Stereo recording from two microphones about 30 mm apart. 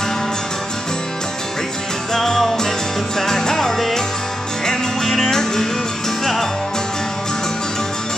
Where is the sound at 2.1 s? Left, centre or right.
Centre.